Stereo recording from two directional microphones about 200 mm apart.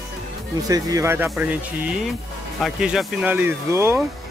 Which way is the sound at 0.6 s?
15° right (ahead or behind).